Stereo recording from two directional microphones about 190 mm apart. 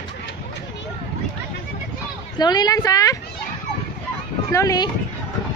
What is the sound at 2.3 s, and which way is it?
Speech, 20° left (ahead or behind).